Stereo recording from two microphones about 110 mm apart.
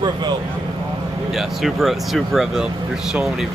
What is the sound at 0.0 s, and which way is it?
Speech, 40° right (ahead or behind).